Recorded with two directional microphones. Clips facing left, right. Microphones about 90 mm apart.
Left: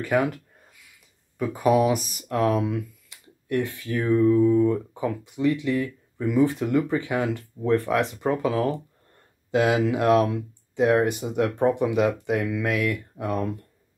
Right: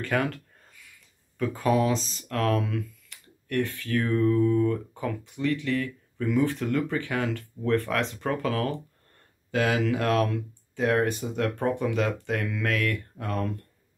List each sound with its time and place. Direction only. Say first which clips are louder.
0.0 s speech: left 4 dB; 15° left (ahead or behind)
1.4 s speech: left 4 dB; 15° left (ahead or behind)